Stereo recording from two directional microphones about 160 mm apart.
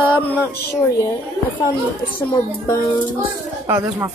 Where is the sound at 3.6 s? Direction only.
15° right (ahead or behind).